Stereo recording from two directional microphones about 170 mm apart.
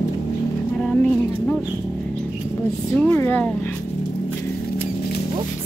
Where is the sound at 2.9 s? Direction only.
10° left (ahead or behind).